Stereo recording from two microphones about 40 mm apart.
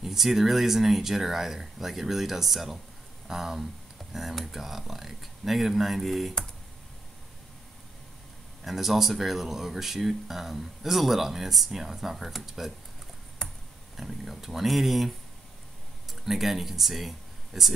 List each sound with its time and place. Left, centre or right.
0.0 s speech: centre
8.6 s speech: centre
13.4 s a sound: centre
13.9 s speech: centre